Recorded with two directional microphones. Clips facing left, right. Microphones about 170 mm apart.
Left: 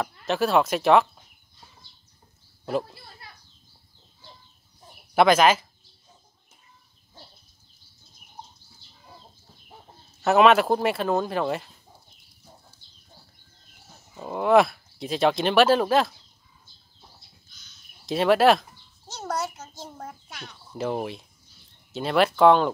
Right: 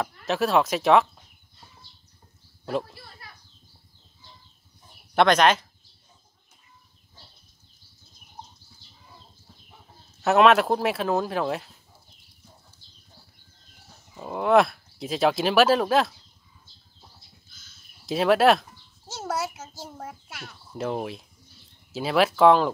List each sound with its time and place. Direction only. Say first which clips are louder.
0.0 s speech: left 1 dB; centre (ahead or behind)
2.8 s a sound: left 1 dB; 25° left (ahead or behind)
5.1 s speech: left 1 dB; 5° left (ahead or behind)
10.2 s speech: even; centre (ahead or behind)
14.1 s speech: left 1 dB; centre (ahead or behind)
17.5 s speech: right 1 dB; 5° right (ahead or behind)